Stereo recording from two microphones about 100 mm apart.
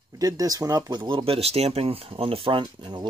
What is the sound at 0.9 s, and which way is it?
Speech, 60° right (ahead or behind).